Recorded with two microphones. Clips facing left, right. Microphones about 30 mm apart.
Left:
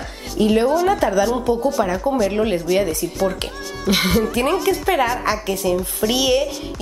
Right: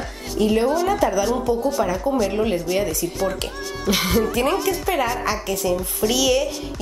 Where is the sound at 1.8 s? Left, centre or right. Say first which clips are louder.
Left 2 dB; centre.